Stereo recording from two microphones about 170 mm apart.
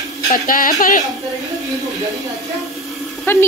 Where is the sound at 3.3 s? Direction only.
15° left (ahead or behind).